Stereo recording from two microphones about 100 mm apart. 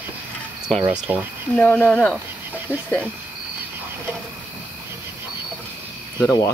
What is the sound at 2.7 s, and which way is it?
Speech, 15° right (ahead or behind).